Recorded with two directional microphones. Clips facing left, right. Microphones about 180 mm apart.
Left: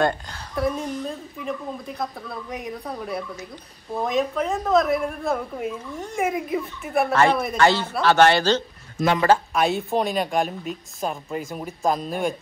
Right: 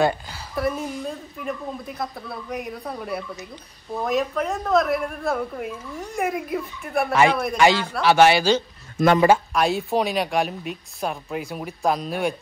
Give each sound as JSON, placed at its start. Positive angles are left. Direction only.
{"t": 0.0, "sound": "speech", "side_deg": -5}
{"t": 7.5, "sound": "speech", "side_deg": -10}
{"t": 9.0, "sound": "a man's voice", "side_deg": -60}
{"t": 9.5, "sound": "speech", "side_deg": 0}